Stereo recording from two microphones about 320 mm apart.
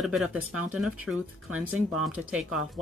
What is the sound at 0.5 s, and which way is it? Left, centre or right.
Speech, right.